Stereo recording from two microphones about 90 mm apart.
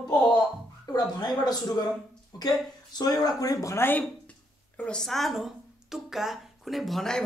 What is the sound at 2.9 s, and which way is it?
Speech, 45° left (ahead or behind).